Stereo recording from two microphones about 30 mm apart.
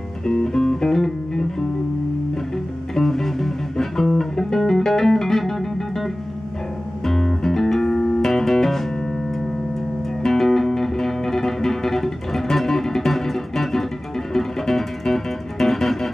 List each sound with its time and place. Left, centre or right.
0.3 s music: centre
2.9 s music: centre
7.1 s music: centre
7.8 s music: left
8.2 s music: centre
10.2 s music: centre